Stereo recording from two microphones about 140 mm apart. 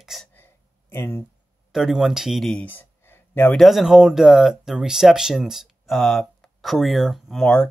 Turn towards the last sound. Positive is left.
turn(degrees=5)  # may be behind; listen again after turning